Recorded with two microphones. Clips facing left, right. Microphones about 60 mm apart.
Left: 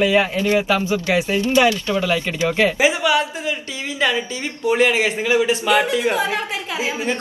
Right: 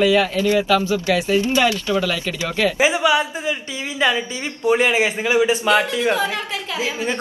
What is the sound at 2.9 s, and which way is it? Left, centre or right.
Speech, centre.